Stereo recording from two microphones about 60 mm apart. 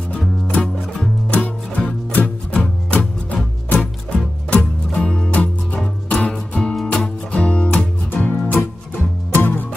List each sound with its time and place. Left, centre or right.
0.5 s music: left
7.7 s music: left